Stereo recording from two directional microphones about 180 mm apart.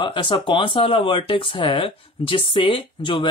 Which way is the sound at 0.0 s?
30° left (ahead or behind).